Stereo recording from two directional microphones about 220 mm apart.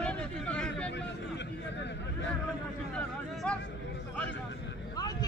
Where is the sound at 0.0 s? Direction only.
5° left (ahead or behind).